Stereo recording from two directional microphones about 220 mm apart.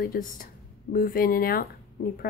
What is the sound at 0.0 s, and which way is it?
Speech, 40° left (ahead or behind).